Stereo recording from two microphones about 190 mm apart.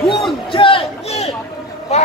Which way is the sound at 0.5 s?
25° left (ahead or behind).